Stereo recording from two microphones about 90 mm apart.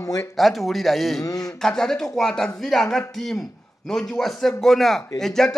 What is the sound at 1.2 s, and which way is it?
Speech, 40° left (ahead or behind).